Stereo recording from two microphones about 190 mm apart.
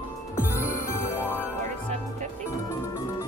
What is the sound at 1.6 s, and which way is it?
Music, 40° right (ahead or behind).